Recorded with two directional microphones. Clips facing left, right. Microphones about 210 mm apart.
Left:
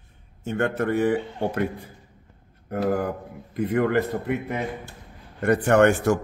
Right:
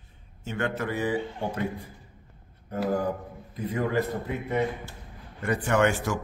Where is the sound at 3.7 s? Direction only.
70° left (ahead or behind).